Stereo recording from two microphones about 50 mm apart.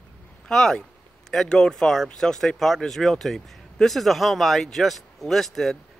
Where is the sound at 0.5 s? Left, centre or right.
Centre.